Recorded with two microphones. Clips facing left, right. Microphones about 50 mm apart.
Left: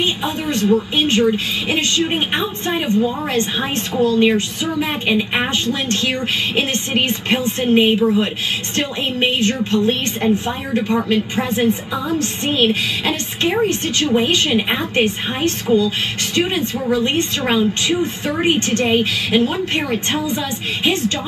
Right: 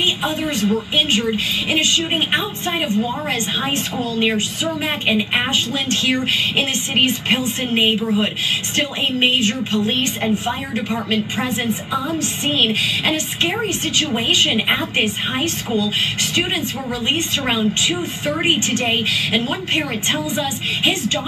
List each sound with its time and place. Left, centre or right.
0.0 s speech: centre
16.3 s speech: centre